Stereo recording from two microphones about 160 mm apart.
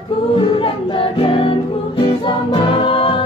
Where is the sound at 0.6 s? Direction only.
35° left (ahead or behind).